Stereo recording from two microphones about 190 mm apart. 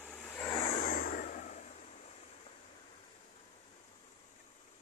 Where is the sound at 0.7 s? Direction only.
45° left (ahead or behind).